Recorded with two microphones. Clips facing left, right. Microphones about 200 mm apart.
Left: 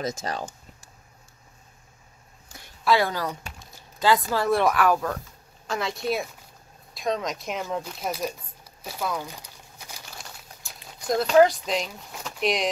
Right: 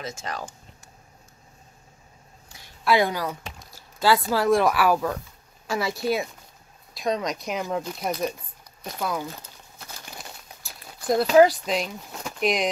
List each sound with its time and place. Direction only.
0.0 s speech: 35° left (ahead or behind)
2.9 s speech: 15° right (ahead or behind); by 9.2 s centre (ahead or behind)
9.2 s crumpling: 15° left (ahead or behind)
10.1 s a sound: centre (ahead or behind)